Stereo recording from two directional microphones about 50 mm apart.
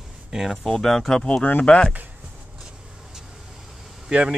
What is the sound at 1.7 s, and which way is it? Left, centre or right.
Speech, centre.